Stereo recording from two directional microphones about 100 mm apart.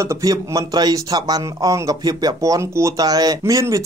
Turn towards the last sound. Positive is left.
turn(degrees=-35)  # may be behind; listen again after turning